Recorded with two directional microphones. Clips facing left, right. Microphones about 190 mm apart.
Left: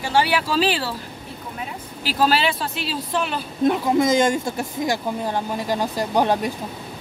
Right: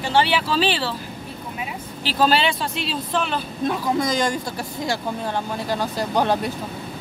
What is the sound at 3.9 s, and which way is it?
Speech, 20° left (ahead or behind).